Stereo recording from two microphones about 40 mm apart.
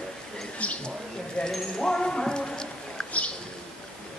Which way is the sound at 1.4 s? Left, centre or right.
Left.